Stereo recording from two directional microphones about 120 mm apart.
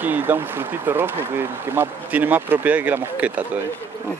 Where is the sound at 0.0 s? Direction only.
15° right (ahead or behind).